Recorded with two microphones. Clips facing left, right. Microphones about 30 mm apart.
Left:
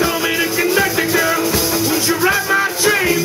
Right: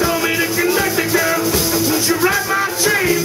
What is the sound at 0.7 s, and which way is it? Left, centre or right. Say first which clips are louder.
Music: left 1 dB; centre.